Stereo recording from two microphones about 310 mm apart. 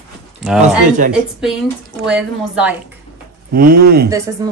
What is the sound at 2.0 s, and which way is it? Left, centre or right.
Speech, centre.